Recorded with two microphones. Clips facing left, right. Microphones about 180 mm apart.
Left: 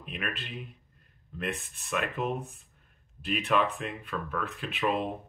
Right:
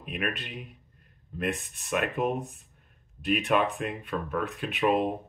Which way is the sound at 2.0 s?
45° right (ahead or behind).